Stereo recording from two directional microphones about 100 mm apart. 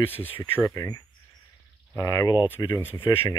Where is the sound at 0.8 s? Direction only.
35° left (ahead or behind).